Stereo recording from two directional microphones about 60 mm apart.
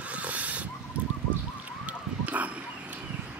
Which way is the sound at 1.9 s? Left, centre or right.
Right.